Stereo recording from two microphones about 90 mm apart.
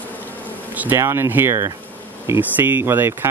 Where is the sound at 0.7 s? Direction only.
20° right (ahead or behind).